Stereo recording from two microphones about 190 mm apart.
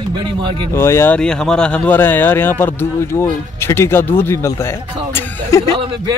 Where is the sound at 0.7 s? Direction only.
15° left (ahead or behind).